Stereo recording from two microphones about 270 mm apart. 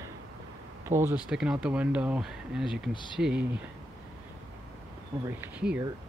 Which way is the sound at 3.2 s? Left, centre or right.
Centre.